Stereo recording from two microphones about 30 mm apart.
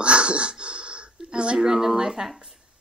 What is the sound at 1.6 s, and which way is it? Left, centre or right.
Speech, centre.